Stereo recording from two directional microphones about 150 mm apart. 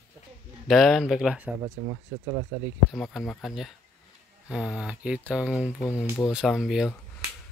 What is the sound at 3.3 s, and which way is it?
Speech, centre (ahead or behind).